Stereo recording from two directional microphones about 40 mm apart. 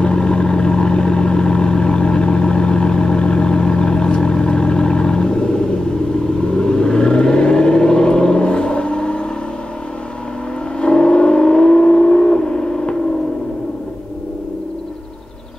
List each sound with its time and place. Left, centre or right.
0.0 s vehicle: left
10.8 s vehicle: left